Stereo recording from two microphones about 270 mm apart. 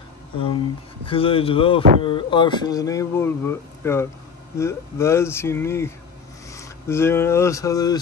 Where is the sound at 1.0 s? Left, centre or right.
Centre.